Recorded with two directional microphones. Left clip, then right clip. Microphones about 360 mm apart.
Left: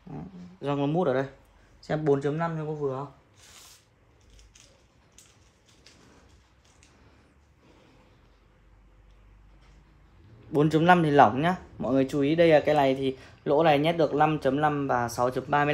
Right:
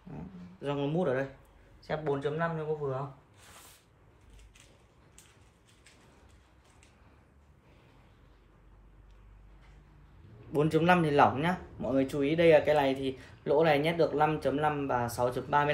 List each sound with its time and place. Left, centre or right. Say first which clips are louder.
0.6 s speech: left 5 dB; left
10.5 s speech: left 5 dB; left